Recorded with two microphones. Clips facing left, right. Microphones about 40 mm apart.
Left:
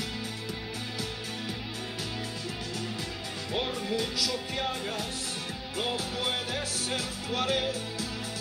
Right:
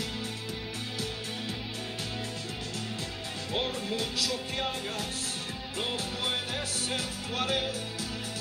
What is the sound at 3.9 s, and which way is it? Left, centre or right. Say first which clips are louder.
Music: left 3 dB; right.